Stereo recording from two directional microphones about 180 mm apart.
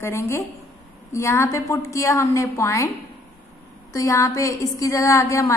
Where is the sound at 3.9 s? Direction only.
15° left (ahead or behind).